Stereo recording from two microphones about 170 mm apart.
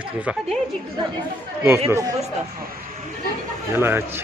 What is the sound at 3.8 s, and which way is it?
Speech, 15° right (ahead or behind).